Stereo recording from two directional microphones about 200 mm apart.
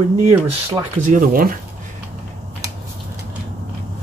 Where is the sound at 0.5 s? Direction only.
35° right (ahead or behind).